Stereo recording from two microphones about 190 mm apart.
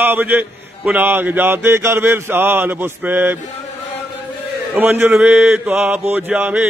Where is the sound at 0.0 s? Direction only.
10° right (ahead or behind).